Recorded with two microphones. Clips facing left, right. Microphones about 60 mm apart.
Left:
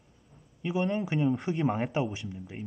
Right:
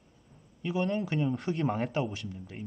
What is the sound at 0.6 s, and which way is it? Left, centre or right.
A man's voice, centre.